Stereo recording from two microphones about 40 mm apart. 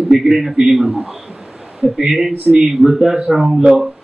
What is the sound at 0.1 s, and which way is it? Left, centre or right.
A man's voice, centre.